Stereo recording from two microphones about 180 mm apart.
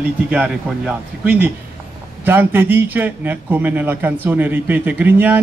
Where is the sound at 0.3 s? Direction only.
5° right (ahead or behind).